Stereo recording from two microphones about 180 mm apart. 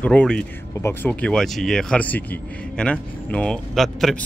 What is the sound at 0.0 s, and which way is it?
Speech, 5° left (ahead or behind).